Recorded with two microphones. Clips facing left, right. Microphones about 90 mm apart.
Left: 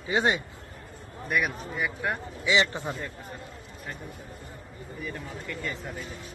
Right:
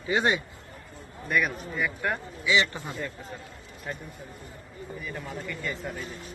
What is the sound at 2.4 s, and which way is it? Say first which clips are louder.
Speech: left 1 dB; 25° left (ahead or behind).